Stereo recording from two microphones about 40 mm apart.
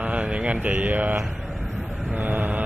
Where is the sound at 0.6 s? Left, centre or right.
Right.